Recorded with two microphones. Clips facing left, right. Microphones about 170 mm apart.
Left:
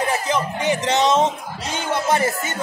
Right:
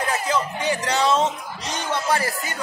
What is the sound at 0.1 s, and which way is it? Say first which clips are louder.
Speech: left 2 dB; 20° left (ahead or behind).